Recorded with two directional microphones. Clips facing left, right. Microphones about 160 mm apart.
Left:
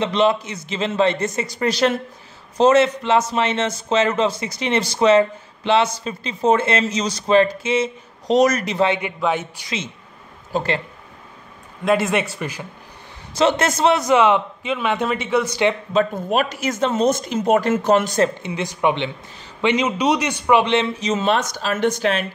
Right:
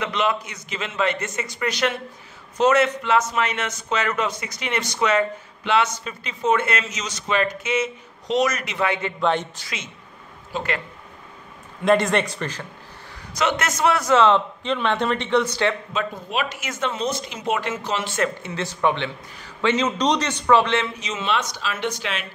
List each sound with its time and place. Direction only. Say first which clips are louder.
0.0 s a man's voice: left 6 dB; 30° left (ahead or behind)
9.2 s a man's voice: even; 5° left (ahead or behind)
10.5 s speech: left 5 dB; 30° left (ahead or behind)
11.8 s speech: even; 5° left (ahead or behind)
13.4 s a man's voice: left 5 dB; 30° left (ahead or behind); by 15.7 s 10° left (ahead or behind)
15.9 s speech: left 8 dB; 45° left (ahead or behind)
18.4 s a man's voice: left 2 dB; 15° left (ahead or behind)
21.0 s speech: left 6 dB; 40° left (ahead or behind)